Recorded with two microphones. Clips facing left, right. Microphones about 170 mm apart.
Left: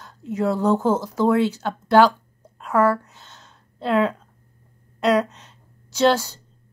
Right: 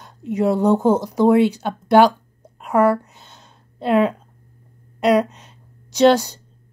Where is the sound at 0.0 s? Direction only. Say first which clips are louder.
Right 4 dB; 15° right (ahead or behind).